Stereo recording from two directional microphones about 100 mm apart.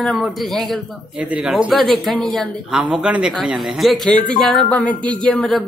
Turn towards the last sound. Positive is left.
turn(degrees=5)  # may be behind; listen again after turning